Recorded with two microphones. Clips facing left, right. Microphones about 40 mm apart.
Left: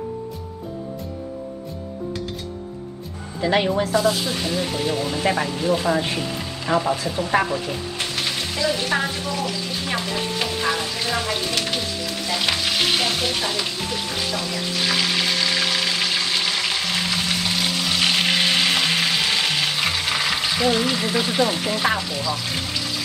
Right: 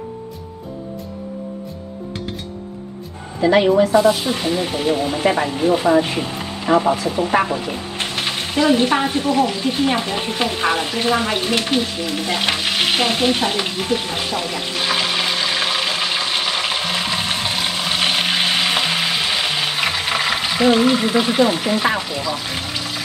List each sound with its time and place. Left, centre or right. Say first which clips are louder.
3.8 s speech: right 6 dB; right
8.0 s frying: right 4 dB; right